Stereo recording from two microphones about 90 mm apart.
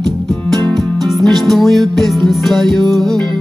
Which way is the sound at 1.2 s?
Centre (ahead or behind).